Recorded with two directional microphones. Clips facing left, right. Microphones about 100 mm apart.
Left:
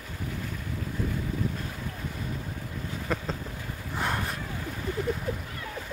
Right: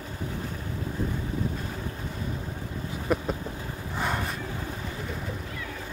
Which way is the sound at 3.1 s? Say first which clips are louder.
Right 5 dB; 10° right (ahead or behind).